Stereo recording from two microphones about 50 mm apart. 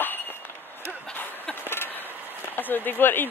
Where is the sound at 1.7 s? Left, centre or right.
Left.